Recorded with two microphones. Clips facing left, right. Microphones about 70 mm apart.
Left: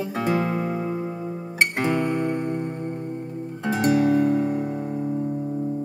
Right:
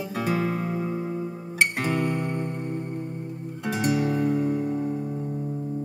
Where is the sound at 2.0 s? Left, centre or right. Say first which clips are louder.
Left 3 dB; left.